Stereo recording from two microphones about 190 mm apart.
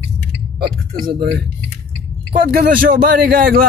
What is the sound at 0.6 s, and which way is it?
Speech, 55° right (ahead or behind).